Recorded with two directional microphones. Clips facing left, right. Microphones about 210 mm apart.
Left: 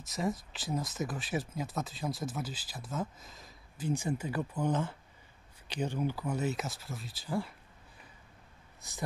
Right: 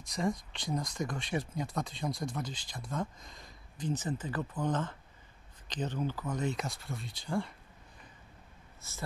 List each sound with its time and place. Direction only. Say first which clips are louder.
0.0 s speech: right 1 dB; 5° left (ahead or behind)
8.8 s speech: left 2 dB; 15° left (ahead or behind)